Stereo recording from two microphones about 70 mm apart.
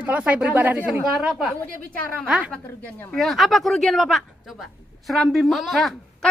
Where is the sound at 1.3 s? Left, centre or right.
Centre.